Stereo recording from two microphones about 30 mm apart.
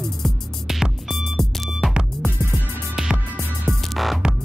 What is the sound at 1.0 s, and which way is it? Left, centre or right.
Music, centre.